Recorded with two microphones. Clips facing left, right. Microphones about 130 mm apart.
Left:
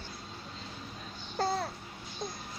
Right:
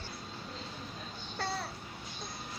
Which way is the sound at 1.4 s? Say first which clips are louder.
Left 6 dB; 45° left (ahead or behind).